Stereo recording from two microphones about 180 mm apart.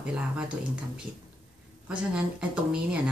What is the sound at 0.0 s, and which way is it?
Speech, 5° right (ahead or behind).